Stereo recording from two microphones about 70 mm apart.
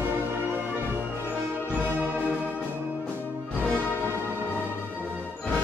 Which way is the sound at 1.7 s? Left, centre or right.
Right.